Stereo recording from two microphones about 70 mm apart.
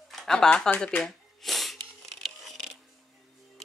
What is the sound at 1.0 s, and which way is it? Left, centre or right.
Shuffling cards, centre.